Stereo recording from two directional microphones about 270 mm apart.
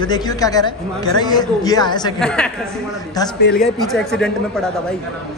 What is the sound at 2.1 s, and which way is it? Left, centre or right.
Speech, centre.